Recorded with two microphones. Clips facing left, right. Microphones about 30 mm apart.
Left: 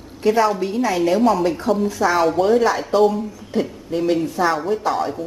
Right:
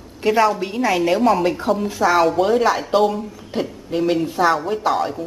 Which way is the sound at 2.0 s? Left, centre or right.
Centre.